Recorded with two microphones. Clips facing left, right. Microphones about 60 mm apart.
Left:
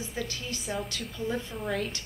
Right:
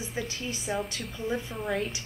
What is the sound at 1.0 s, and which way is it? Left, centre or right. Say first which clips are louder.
Speech: even; centre.